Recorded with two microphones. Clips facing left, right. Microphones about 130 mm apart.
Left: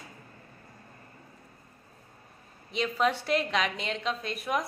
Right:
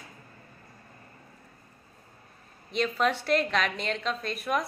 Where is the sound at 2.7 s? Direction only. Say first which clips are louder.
Right 1 dB; 15° left (ahead or behind).